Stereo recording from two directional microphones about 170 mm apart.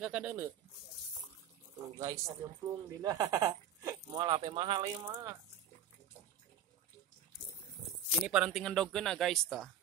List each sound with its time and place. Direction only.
0.0 s speech: 10° right (ahead or behind)
2.0 s speech: 20° right (ahead or behind)
8.3 s speech: centre (ahead or behind)